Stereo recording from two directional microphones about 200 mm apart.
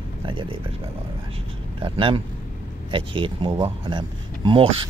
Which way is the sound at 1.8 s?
25° right (ahead or behind).